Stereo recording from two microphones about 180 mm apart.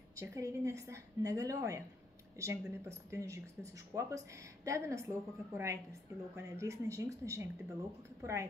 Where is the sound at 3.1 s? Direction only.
15° right (ahead or behind).